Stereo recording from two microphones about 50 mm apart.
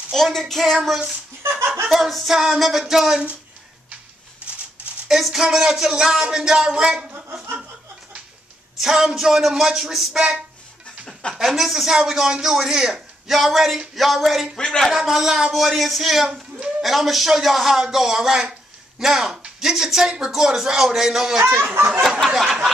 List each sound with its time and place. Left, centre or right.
0.1 s a man's voice: centre
4.4 s a sound: right
5.0 s a man's voice: centre
8.7 s a man's voice: centre
11.4 s a man's voice: centre
14.6 s speech: centre
14.9 s a man's voice: centre
21.6 s a sound: right
22.3 s a man's voice: centre